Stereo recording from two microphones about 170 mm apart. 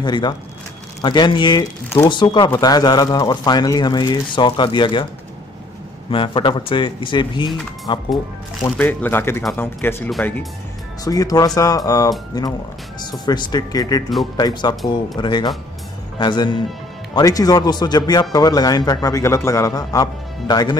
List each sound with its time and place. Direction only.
0.0 s speech: 25° left (ahead or behind)
6.0 s speech: 30° left (ahead or behind)
8.7 s speech: 10° left (ahead or behind)
11.1 s speech: 20° left (ahead or behind)